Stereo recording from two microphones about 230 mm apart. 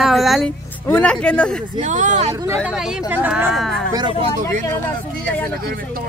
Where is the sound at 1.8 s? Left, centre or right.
Right.